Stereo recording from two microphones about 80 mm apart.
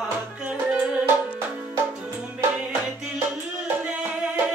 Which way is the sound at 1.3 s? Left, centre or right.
Right.